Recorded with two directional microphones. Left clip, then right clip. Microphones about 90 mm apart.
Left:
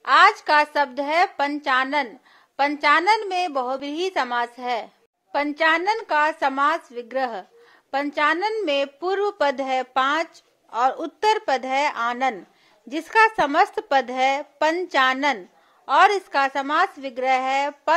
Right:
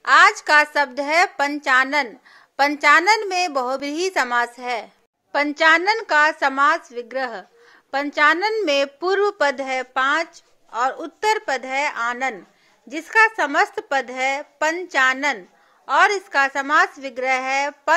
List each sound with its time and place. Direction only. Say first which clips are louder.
0.0 s a woman's voice: right 2 dB; 10° left (ahead or behind)
0.8 s a woman's voice: right 2 dB; 5° left (ahead or behind)
4.6 s speech: even; 30° left (ahead or behind)
5.3 s a woman's voice: right 4 dB; centre (ahead or behind); by 6.8 s 15° left (ahead or behind)
7.1 s speech: left 1 dB; 35° left (ahead or behind)
7.9 s a woman's voice: right 1 dB; 20° left (ahead or behind)
8.2 s a woman's voice: right 5 dB; 5° left (ahead or behind)
9.4 s speech: right 1 dB; 25° left (ahead or behind)